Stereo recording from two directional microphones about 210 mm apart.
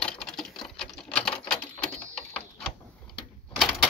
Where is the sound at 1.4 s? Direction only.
5° left (ahead or behind).